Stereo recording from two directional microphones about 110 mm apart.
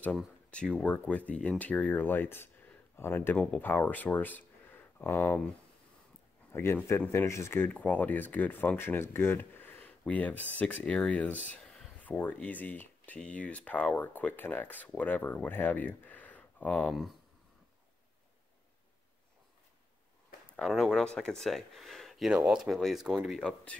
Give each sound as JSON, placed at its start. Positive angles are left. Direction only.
{"t": 0.5, "sound": "speech", "side_deg": 10}
{"t": 6.5, "sound": "speech", "side_deg": 20}
{"t": 16.9, "sound": "speech", "side_deg": 0}
{"t": 20.5, "sound": "speech", "side_deg": 5}
{"t": 23.3, "sound": "speech", "side_deg": 10}